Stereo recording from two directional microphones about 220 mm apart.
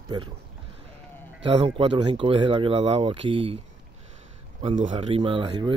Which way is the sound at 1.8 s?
20° right (ahead or behind).